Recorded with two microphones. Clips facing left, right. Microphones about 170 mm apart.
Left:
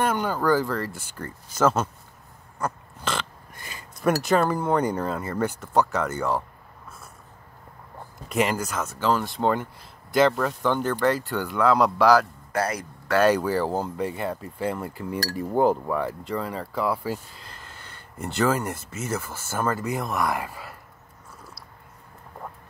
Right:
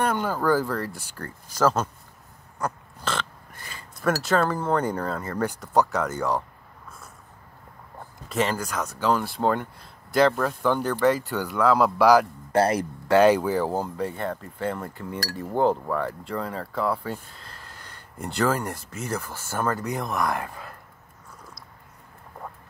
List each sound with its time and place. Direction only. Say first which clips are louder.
0.0 s speech: even; centre (ahead or behind)
1.2 s speech: left 1 dB; 5° left (ahead or behind)
2.6 s a sound: even; 5° left (ahead or behind)
3.5 s speech: left 1 dB; 20° left (ahead or behind); by 6.4 s centre (ahead or behind)
8.4 s speech: left 1 dB; 10° left (ahead or behind); by 12.3 s 10° right (ahead or behind)
12.5 s speech: right 5 dB; 25° right (ahead or behind)
13.2 s speech: right 2 dB; 15° right (ahead or behind)
13.5 s speech: even; centre (ahead or behind)
18.2 s speech: left 1 dB; centre (ahead or behind)